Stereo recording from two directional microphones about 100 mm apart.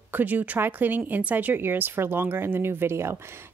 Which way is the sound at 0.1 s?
15° right (ahead or behind).